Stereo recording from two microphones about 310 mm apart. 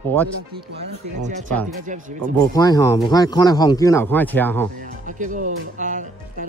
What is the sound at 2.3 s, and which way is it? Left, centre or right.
Speech, centre.